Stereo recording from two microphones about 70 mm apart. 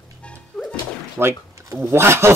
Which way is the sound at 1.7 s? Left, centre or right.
Right.